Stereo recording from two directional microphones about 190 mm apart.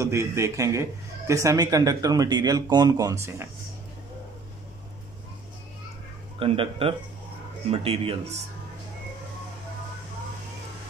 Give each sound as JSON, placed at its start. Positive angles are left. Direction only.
{"t": 0.0, "sound": "a man's voice", "side_deg": -15}
{"t": 6.4, "sound": "a man's voice", "side_deg": -30}